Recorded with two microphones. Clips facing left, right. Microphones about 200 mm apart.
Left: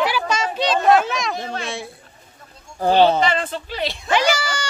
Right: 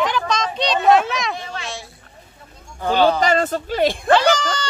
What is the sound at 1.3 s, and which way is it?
Speech, 40° left (ahead or behind).